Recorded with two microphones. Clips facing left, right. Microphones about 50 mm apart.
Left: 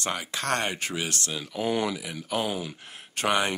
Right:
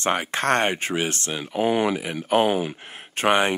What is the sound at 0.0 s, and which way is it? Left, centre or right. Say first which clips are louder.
Speech: right 8 dB; right.